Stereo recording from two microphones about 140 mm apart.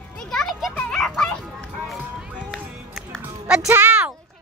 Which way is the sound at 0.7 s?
10° left (ahead or behind).